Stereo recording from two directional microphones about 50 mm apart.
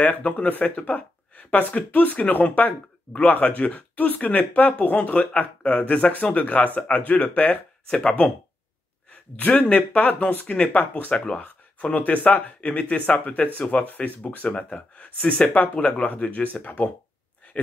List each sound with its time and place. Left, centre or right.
0.0 s speech: left
7.9 s speech: centre
9.4 s speech: left